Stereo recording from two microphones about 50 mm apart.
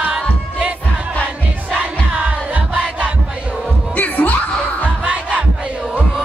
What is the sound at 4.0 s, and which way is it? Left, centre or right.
Music, left.